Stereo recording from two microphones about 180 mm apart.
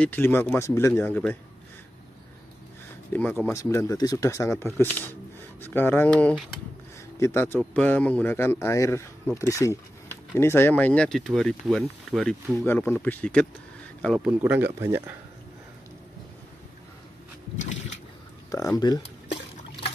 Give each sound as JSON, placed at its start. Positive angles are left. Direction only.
{"t": 0.0, "sound": "speech", "side_deg": 10}
{"t": 3.1, "sound": "speech", "side_deg": 10}
{"t": 17.6, "sound": "a sound", "side_deg": 40}
{"t": 18.8, "sound": "speech", "side_deg": 20}